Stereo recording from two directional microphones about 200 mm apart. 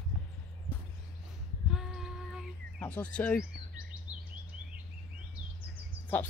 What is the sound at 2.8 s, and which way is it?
Speech, 5° left (ahead or behind).